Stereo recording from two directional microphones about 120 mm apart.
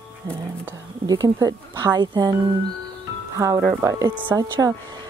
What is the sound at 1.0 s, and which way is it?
Speech, 35° right (ahead or behind).